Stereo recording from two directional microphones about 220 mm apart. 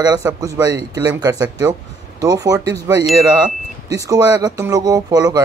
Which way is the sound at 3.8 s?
15° right (ahead or behind).